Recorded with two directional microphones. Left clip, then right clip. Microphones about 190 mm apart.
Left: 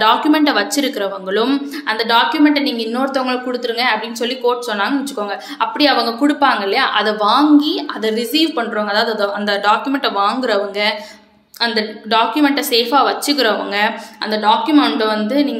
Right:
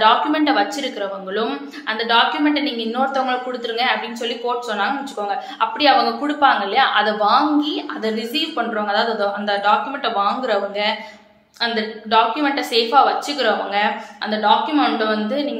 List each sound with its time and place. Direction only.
0.0 s a woman's voice: 45° left (ahead or behind)